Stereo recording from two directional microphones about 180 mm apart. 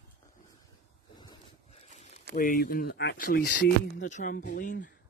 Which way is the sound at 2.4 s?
50° left (ahead or behind).